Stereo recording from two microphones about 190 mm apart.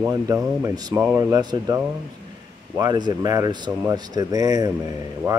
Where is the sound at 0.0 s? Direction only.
15° right (ahead or behind).